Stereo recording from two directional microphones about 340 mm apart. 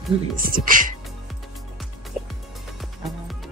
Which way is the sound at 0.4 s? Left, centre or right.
Right.